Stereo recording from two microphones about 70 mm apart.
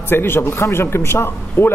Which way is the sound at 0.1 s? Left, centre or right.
Left.